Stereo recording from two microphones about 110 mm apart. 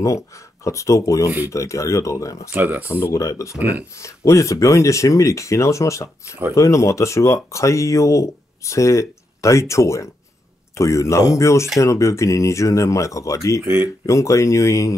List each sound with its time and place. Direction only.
0.7 s speech: 30° left (ahead or behind)
2.5 s speech: 15° right (ahead or behind)
2.8 s speech: 25° left (ahead or behind)